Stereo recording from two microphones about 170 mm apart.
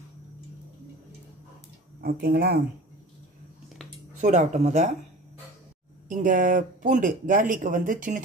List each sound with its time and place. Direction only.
2.0 s speech: 65° right (ahead or behind)
4.2 s speech: 45° right (ahead or behind)
6.0 s speech: 50° right (ahead or behind)